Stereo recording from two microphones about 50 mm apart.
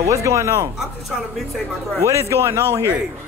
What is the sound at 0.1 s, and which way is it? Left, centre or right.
Speech, right.